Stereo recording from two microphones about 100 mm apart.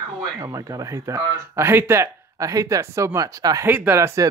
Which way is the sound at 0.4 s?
35° right (ahead or behind).